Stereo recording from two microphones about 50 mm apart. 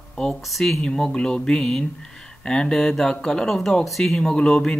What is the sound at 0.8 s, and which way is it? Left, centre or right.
Speech, centre.